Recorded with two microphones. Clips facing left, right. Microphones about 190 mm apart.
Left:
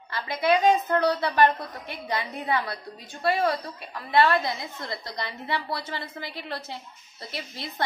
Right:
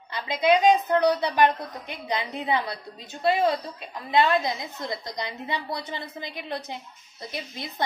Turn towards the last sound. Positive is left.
turn(degrees=-20)  # may be behind; listen again after turning